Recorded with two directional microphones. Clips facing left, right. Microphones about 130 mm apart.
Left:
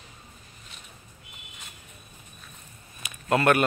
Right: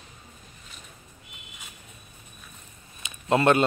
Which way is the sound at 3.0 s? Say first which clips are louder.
Right 1 dB; 25° right (ahead or behind).